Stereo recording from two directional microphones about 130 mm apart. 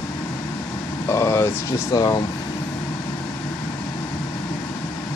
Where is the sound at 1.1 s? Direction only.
20° left (ahead or behind).